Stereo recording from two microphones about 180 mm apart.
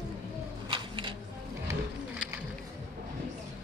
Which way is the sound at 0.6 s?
30° right (ahead or behind).